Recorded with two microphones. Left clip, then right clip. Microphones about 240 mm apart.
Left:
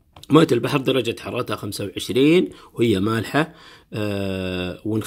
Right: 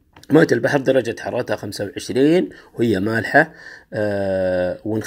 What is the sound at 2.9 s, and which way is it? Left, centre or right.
Speech, centre.